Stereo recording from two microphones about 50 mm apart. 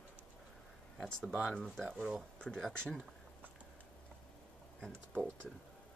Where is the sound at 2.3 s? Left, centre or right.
Centre.